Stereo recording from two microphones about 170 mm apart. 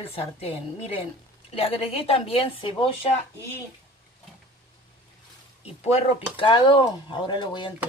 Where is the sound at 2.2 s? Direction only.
35° left (ahead or behind).